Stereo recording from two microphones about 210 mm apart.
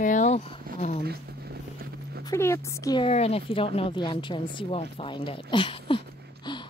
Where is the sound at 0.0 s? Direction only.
35° left (ahead or behind).